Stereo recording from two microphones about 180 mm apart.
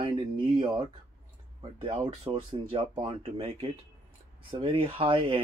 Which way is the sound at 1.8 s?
30° right (ahead or behind).